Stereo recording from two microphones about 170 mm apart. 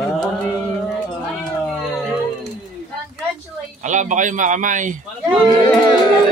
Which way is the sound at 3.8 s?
45° right (ahead or behind).